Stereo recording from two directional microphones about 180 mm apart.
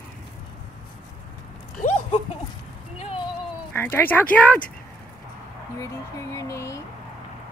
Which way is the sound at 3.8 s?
10° left (ahead or behind).